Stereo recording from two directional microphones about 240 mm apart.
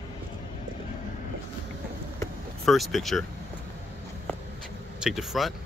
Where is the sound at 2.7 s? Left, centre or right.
Centre.